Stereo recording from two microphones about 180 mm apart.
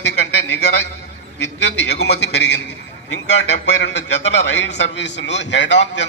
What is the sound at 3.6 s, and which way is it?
A man's voice, 75° left (ahead or behind).